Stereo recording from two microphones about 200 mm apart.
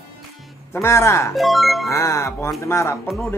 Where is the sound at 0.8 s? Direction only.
15° left (ahead or behind).